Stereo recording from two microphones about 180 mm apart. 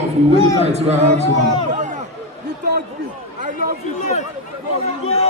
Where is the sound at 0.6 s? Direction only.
35° right (ahead or behind).